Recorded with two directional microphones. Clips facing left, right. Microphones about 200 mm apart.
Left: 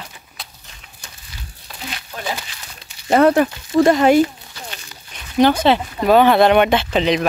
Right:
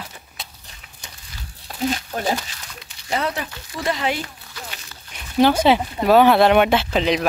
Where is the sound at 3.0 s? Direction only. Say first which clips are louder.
Left 12 dB; 55° left (ahead or behind).